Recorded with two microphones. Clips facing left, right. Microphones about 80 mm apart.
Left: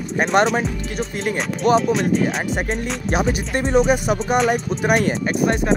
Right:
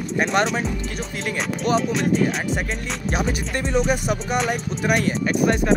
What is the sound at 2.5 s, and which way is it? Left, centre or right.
Speech, left.